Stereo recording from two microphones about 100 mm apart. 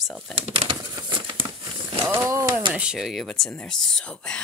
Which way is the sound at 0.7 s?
45° right (ahead or behind).